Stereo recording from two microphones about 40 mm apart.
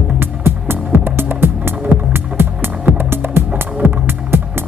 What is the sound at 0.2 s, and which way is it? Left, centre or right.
Music, right.